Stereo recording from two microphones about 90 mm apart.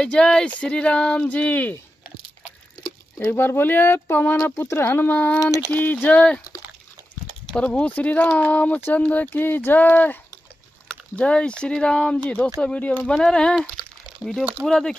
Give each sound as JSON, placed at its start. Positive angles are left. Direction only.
{"t": 0.0, "sound": "speech", "side_deg": 10}
{"t": 3.3, "sound": "speech", "side_deg": 25}
{"t": 5.4, "sound": "a sound", "side_deg": 35}
{"t": 5.7, "sound": "speech", "side_deg": 20}
{"t": 7.5, "sound": "speech", "side_deg": 10}
{"t": 11.1, "sound": "speech", "side_deg": 10}
{"t": 14.6, "sound": "speech", "side_deg": 5}